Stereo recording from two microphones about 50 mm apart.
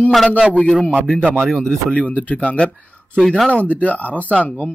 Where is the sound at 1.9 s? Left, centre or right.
Left.